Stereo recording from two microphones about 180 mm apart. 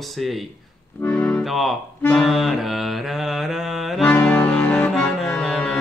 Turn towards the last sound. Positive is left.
turn(degrees=5)  # may be behind; listen again after turning